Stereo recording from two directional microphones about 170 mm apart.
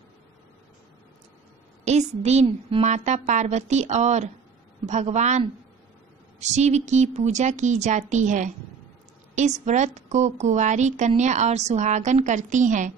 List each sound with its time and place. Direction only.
1.9 s a woman's voice: 40° right (ahead or behind)
9.7 s speech: 45° right (ahead or behind)